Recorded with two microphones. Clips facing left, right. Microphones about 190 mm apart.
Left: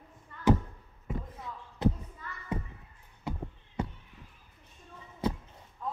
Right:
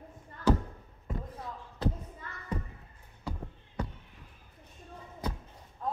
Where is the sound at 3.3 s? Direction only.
20° left (ahead or behind).